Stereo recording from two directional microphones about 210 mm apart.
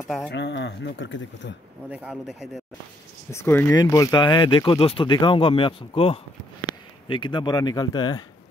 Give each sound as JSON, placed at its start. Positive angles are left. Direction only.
{"t": 0.3, "sound": "speech", "side_deg": 55}
{"t": 1.9, "sound": "speech", "side_deg": -5}
{"t": 3.3, "sound": "speech", "side_deg": 10}